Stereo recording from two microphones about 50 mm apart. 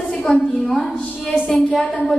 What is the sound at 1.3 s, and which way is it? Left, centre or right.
Speech, centre.